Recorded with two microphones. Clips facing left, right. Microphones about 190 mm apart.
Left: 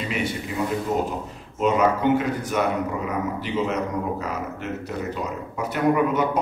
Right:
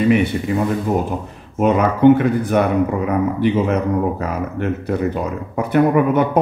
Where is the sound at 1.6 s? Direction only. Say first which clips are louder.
Right 6 dB; 55° right (ahead or behind).